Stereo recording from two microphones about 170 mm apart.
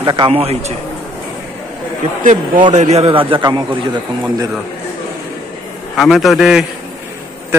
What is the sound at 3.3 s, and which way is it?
Speech, 25° right (ahead or behind).